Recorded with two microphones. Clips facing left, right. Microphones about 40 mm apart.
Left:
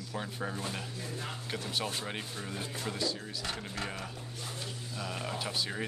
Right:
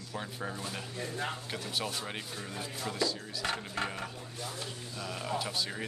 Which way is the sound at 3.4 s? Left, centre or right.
Right.